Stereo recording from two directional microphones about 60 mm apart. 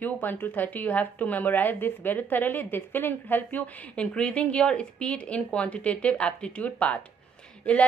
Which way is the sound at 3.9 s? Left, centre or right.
Centre.